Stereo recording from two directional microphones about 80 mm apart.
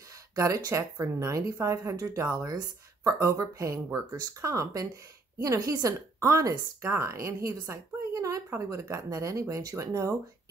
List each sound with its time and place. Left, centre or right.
0.7 s speech: right
8.1 s a sound: right
8.5 s speech: right